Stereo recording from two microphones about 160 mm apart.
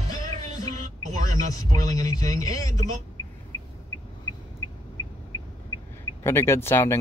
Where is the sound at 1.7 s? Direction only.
20° left (ahead or behind).